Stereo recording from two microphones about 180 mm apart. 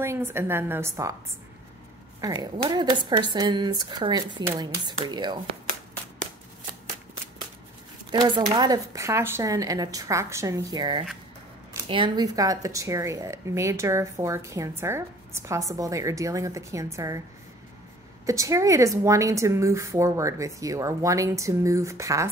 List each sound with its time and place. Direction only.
0.0 s speech: 15° right (ahead or behind)
2.2 s speech: 20° right (ahead or behind)
8.1 s speech: 25° right (ahead or behind)
18.2 s speech: 15° right (ahead or behind)